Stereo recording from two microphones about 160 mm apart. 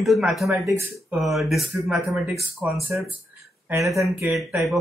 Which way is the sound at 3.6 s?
15° right (ahead or behind).